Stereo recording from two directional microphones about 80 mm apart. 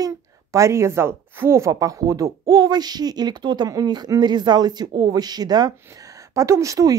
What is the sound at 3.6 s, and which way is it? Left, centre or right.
Speech, right.